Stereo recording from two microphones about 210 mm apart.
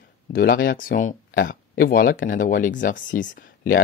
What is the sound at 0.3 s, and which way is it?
Speech, 45° left (ahead or behind).